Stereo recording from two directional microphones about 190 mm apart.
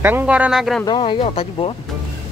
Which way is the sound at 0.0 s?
10° right (ahead or behind).